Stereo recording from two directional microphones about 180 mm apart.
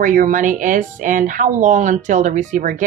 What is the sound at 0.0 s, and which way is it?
A woman's voice, 45° right (ahead or behind).